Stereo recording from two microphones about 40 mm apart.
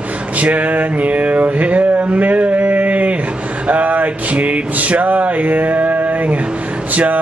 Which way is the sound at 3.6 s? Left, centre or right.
Right.